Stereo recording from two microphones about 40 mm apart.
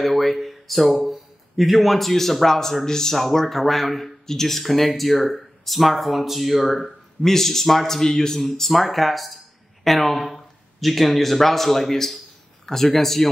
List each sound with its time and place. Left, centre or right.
0.0 s speech: centre